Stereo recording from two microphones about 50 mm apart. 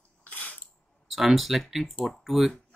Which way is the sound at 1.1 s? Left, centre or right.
Centre.